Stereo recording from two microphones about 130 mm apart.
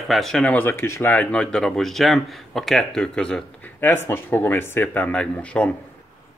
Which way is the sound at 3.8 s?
15° left (ahead or behind).